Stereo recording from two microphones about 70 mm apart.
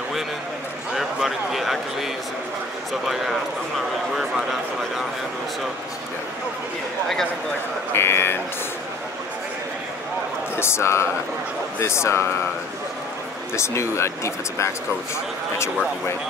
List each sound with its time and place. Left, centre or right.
0.9 s speech: centre
7.9 s speech: left
10.6 s speech: left
13.6 s speech: left